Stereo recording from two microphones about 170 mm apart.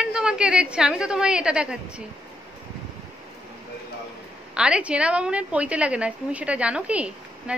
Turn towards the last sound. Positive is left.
turn(degrees=-5)  # may be behind; listen again after turning